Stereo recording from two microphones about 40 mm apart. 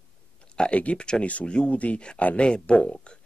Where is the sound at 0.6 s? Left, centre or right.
Left.